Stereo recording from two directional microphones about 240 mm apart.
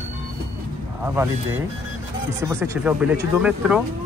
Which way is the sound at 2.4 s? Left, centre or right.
Centre.